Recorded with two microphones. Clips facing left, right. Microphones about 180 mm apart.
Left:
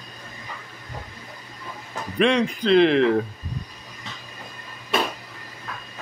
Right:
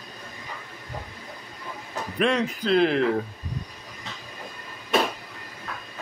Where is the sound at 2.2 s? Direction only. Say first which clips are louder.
Left 4 dB; 5° right (ahead or behind).